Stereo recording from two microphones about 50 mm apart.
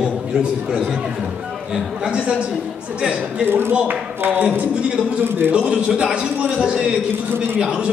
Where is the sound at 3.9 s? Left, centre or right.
Right.